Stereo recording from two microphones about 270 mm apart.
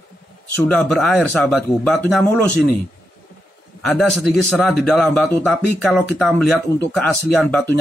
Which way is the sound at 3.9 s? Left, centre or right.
Centre.